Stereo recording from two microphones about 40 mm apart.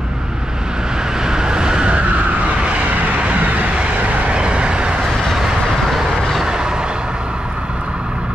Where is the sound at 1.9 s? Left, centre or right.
Right.